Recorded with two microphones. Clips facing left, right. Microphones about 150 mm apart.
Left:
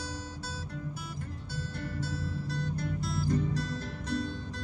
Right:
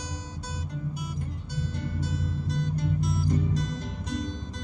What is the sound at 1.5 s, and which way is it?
Music, 20° right (ahead or behind).